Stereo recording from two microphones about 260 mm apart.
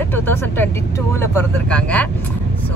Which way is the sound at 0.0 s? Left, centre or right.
Centre.